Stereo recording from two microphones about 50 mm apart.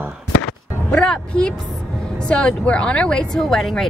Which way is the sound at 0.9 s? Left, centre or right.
Centre.